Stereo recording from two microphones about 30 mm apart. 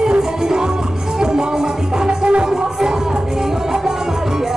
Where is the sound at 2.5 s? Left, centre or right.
Centre.